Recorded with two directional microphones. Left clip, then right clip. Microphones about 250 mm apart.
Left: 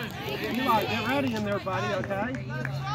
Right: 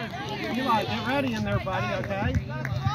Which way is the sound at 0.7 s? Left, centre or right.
Right.